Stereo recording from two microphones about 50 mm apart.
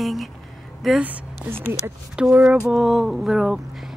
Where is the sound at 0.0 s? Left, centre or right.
Centre.